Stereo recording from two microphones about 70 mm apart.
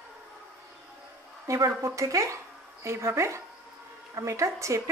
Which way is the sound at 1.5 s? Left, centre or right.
Right.